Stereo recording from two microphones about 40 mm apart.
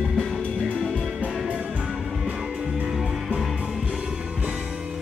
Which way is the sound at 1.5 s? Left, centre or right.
Right.